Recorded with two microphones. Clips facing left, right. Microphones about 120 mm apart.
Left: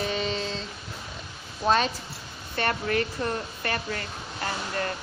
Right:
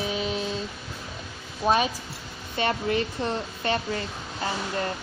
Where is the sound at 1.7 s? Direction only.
10° right (ahead or behind).